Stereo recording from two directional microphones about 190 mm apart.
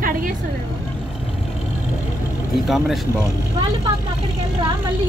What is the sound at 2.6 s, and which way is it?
Speech, centre (ahead or behind).